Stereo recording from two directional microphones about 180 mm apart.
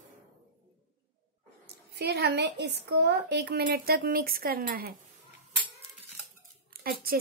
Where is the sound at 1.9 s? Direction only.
65° right (ahead or behind).